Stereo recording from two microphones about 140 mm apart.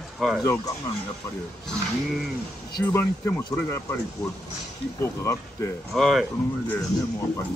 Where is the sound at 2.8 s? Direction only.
15° left (ahead or behind).